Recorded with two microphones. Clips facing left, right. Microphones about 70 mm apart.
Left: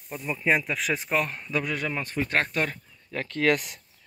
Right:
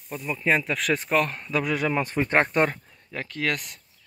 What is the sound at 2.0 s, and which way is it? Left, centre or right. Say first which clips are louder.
Speech: right 4 dB; right.